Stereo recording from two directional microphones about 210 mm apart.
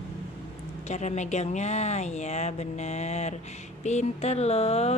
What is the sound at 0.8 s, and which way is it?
Speech, 35° left (ahead or behind).